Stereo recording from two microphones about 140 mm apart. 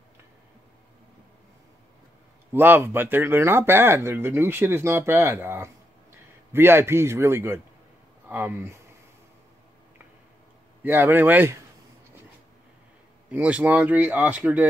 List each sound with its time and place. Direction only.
2.5 s speech: 15° right (ahead or behind)
10.8 s speech: 15° right (ahead or behind)
13.3 s speech: 10° right (ahead or behind)